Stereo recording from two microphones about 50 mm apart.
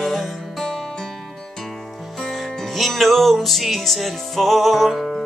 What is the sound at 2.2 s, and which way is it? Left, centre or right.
Music, centre.